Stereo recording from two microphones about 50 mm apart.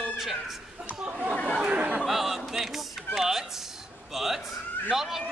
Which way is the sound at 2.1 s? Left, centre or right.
Centre.